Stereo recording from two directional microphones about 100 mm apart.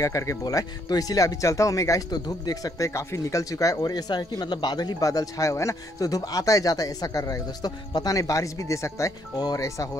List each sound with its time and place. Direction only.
0.0 s speech: 35° left (ahead or behind)